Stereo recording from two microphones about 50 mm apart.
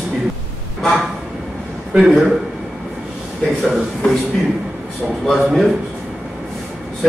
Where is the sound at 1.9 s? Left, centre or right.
Right.